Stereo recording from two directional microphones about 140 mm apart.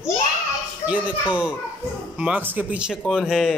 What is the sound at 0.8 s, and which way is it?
Speech, 10° right (ahead or behind).